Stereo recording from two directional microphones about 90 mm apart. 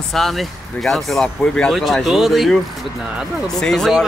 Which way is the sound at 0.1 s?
Centre (ahead or behind).